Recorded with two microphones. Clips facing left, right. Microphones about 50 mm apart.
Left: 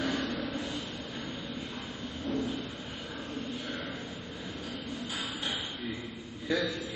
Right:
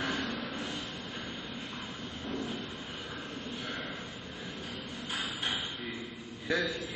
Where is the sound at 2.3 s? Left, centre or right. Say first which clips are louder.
Left 3 dB; centre.